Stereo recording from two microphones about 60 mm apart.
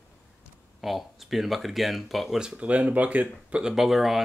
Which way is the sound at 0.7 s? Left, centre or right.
Centre.